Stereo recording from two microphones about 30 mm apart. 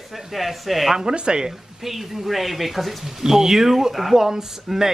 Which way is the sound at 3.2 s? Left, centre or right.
Centre.